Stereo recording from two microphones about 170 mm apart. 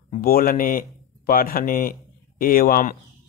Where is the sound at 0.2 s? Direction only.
60° left (ahead or behind).